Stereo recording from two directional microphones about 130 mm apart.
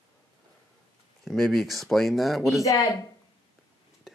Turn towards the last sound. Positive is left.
turn(degrees=0)  # may be behind; listen again after turning